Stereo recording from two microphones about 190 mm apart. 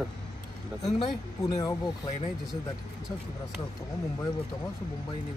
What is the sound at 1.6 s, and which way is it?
Speech, 20° left (ahead or behind).